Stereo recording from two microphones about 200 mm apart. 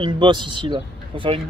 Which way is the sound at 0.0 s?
25° right (ahead or behind).